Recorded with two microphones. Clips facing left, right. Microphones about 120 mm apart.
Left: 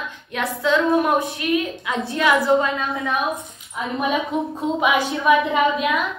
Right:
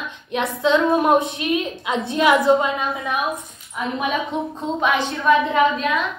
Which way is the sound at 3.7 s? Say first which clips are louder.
Left 1 dB; centre (ahead or behind).